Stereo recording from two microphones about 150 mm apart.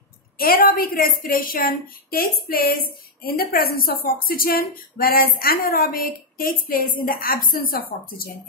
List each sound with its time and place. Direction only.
0.4 s a woman's voice: 80° left
3.3 s a woman's voice: 90° left